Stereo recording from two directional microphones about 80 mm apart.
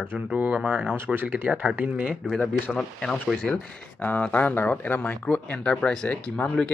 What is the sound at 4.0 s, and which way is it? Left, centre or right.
Speech, left.